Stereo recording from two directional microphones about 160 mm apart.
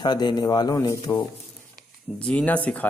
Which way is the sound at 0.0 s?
25° left (ahead or behind).